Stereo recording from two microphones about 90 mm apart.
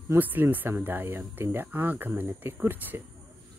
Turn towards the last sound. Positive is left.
turn(degrees=-20)  # may be behind; listen again after turning